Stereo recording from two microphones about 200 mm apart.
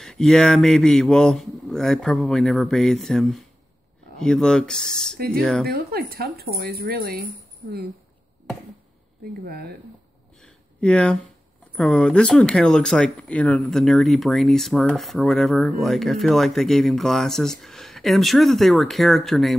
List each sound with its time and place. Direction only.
0.0 s speech: centre (ahead or behind)
5.7 s speech: 50° right (ahead or behind)
9.5 s speech: 50° right (ahead or behind)
10.4 s a sound: 5° left (ahead or behind)
11.7 s speech: 5° left (ahead or behind)